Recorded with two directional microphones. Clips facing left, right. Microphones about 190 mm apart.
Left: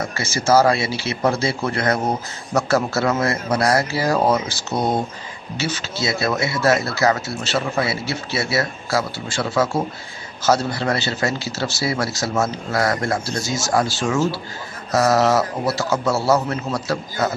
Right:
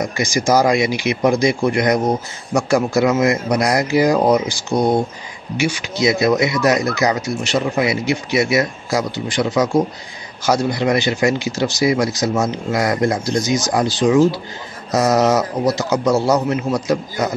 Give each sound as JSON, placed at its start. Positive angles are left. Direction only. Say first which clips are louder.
{"t": 0.0, "sound": "speech", "louder": "right 5 dB", "side_deg": -15}